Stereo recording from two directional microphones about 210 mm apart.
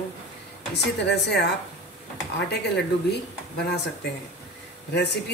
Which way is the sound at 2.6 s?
55° left (ahead or behind).